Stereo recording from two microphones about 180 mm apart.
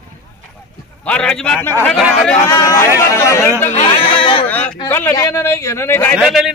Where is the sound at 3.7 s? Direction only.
35° left (ahead or behind).